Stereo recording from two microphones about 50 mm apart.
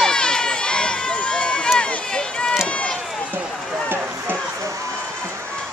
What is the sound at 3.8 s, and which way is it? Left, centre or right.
Run, right.